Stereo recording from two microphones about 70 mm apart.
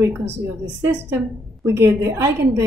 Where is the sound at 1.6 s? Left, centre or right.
Right.